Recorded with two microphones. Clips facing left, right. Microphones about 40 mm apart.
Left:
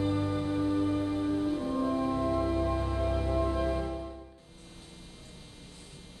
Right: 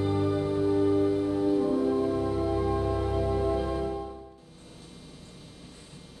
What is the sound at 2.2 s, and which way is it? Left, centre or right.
Music, centre.